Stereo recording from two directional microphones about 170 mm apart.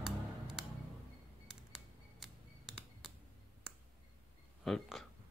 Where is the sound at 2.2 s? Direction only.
Centre (ahead or behind).